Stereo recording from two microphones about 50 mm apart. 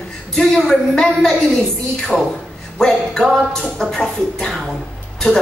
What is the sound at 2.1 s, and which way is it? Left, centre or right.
Speech, centre.